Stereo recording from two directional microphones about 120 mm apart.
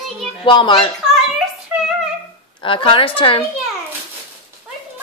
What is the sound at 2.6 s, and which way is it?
Speech, 45° left (ahead or behind).